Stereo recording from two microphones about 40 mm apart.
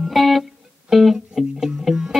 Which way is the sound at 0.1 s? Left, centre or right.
Centre.